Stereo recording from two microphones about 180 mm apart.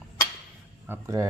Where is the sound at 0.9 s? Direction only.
15° right (ahead or behind).